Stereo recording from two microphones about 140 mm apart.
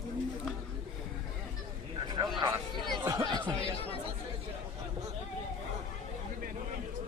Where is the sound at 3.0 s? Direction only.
20° right (ahead or behind).